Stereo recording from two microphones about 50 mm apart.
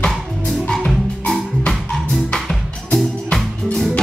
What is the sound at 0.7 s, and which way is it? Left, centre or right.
Music, centre.